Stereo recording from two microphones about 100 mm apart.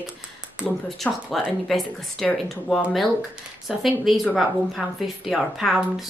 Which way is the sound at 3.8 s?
Centre (ahead or behind).